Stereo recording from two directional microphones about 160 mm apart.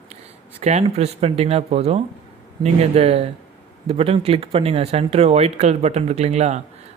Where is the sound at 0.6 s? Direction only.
40° right (ahead or behind).